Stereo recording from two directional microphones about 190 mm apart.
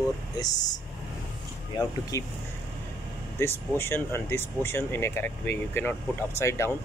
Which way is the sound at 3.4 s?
10° left (ahead or behind).